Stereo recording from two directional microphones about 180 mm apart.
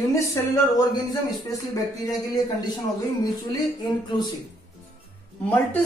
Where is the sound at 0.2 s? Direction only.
15° left (ahead or behind).